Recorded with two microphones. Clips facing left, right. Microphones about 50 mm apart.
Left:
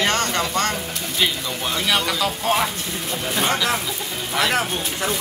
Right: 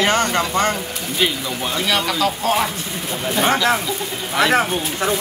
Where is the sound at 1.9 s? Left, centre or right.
Centre.